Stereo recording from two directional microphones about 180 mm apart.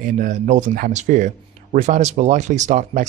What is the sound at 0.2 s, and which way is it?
Speech, 45° right (ahead or behind).